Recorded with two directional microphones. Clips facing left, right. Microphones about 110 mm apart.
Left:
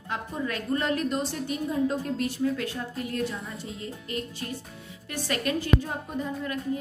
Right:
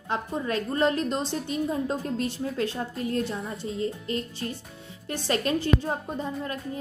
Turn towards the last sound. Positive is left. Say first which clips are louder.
# even
turn(degrees=-30)  # may be behind; listen again after turning